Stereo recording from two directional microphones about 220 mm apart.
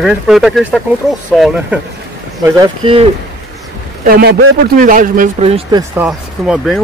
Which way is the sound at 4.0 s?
45° right (ahead or behind).